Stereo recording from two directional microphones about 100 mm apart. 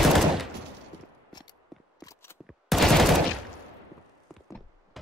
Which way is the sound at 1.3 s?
45° left (ahead or behind).